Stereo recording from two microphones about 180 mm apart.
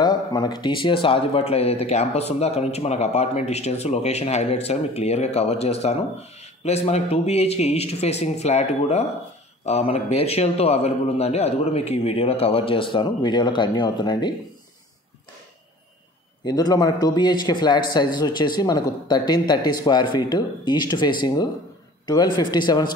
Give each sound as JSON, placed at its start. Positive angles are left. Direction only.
{"t": 0.0, "sound": "speech", "side_deg": 20}
{"t": 16.4, "sound": "a man's voice", "side_deg": 20}